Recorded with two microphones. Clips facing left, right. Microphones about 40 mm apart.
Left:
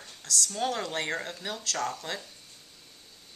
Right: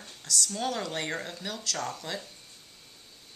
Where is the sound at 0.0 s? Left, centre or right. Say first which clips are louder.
Even; centre.